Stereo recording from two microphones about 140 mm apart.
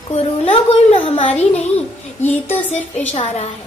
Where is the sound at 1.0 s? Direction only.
45° left (ahead or behind).